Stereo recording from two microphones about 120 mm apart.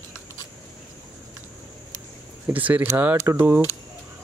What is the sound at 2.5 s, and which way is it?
Speech, 15° right (ahead or behind).